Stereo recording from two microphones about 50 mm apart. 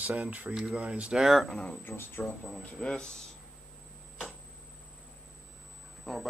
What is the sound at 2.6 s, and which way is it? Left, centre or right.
Speech, centre.